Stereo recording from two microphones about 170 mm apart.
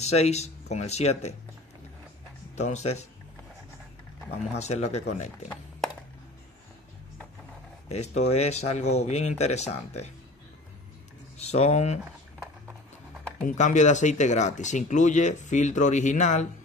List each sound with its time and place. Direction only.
0.0 s speech: 40° left (ahead or behind)
2.5 s speech: 40° left (ahead or behind)
4.3 s speech: 40° left (ahead or behind)
7.9 s speech: 40° left (ahead or behind)
11.3 s speech: 40° left (ahead or behind)
13.5 s speech: 45° left (ahead or behind)